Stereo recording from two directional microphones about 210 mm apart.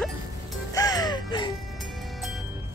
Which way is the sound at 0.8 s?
20° left (ahead or behind).